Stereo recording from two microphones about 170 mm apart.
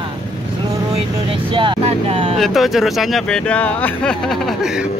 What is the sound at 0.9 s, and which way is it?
Speech, 30° right (ahead or behind).